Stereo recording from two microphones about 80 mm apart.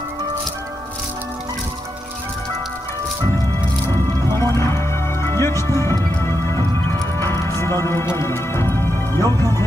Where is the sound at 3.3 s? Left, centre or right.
Left.